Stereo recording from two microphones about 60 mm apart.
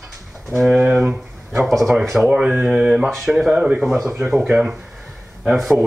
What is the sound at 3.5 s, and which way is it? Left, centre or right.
Speech, centre.